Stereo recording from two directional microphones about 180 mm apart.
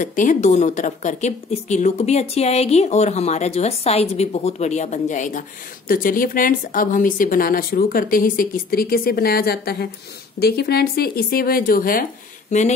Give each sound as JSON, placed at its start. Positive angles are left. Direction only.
{"t": 0.0, "sound": "a woman's voice", "side_deg": 45}